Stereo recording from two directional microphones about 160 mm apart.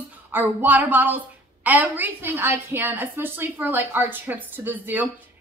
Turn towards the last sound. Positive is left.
turn(degrees=-10)  # may be behind; listen again after turning